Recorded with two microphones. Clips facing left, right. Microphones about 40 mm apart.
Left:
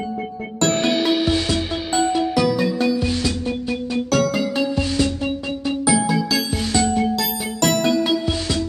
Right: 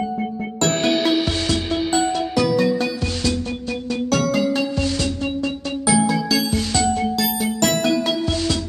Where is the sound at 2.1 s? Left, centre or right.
Centre.